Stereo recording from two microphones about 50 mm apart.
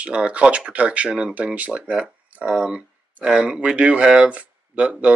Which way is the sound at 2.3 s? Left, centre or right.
Right.